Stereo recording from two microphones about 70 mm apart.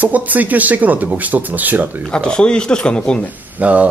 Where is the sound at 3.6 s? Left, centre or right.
Right.